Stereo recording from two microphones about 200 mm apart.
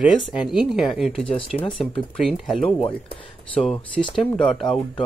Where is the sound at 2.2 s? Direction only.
Centre (ahead or behind).